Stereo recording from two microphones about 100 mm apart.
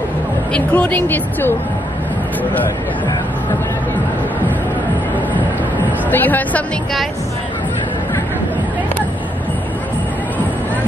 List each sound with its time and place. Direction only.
0.5 s speech: 15° left (ahead or behind)
6.0 s speech: 20° left (ahead or behind)